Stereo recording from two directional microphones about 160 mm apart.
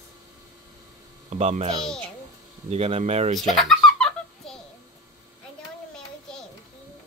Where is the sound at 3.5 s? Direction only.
Centre (ahead or behind).